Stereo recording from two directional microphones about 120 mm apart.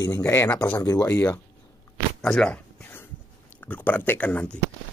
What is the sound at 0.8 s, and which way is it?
Speech, 30° left (ahead or behind).